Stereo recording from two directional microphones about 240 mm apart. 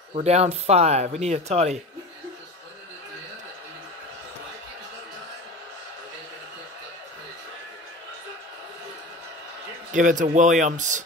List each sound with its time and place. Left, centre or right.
0.1 s speech: right
9.9 s speech: right